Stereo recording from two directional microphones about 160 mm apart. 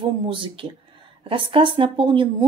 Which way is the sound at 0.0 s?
30° right (ahead or behind).